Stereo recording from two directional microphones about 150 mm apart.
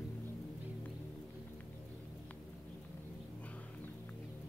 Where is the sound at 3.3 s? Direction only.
10° left (ahead or behind).